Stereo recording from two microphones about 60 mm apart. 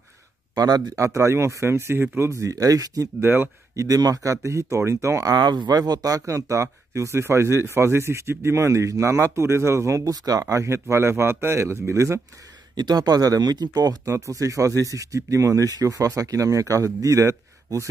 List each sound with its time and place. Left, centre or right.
0.6 s speech: right
2.5 s speech: right
3.2 s speech: right
3.7 s speech: right
5.2 s speech: right
10.0 s speech: right
12.9 s speech: right
14.1 s speech: right